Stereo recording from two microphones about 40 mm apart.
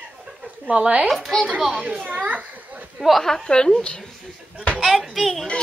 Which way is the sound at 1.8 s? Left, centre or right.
Right.